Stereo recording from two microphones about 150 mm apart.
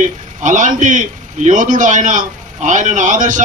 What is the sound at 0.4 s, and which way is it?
Speech, 55° right (ahead or behind).